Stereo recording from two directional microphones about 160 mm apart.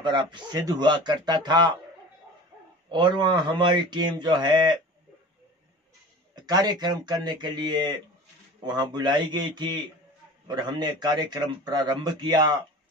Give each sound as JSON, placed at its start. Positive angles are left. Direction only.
{"t": 0.0, "sound": "a man's voice", "side_deg": -30}
{"t": 2.9, "sound": "a man's voice", "side_deg": -30}
{"t": 6.3, "sound": "a man's voice", "side_deg": -25}